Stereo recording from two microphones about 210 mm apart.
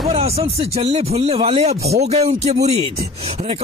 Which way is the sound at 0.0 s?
25° right (ahead or behind).